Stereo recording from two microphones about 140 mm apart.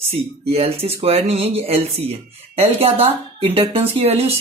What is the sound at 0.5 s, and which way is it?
Speech, 45° right (ahead or behind).